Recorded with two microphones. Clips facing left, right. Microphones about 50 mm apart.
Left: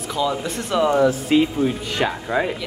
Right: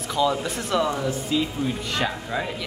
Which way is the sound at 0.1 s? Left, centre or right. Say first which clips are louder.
Even; centre.